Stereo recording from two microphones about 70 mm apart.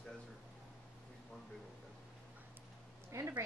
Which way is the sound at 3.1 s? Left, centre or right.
Right.